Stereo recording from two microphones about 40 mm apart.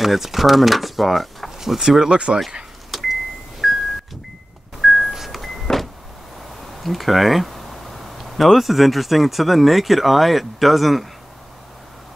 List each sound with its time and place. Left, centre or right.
0.0 s speech: centre
1.6 s speech: centre
2.1 s speech: right
2.9 s a sound: centre
3.6 s music: centre
4.8 s vehicle: centre
6.8 s speech: centre